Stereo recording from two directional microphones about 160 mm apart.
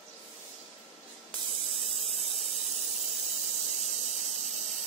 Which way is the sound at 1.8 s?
Centre (ahead or behind).